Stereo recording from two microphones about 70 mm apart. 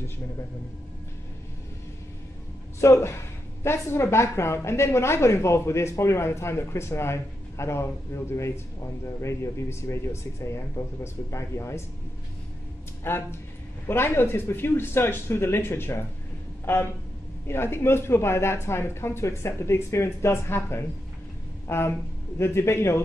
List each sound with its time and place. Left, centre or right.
2.8 s a woman's voice: left
13.0 s a woman's voice: left
17.5 s a woman's voice: left